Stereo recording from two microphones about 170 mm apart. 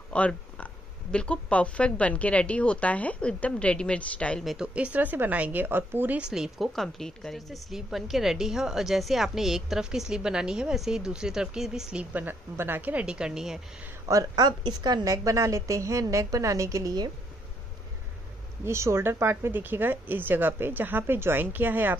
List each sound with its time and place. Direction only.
0.1 s a sound: 5° left (ahead or behind)
1.1 s a woman's voice: 5° left (ahead or behind)
14.0 s a woman's voice: 20° right (ahead or behind)
18.7 s a woman's voice: 15° right (ahead or behind)